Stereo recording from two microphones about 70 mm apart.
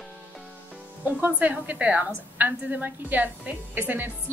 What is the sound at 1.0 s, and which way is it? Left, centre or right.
A woman's voice, right.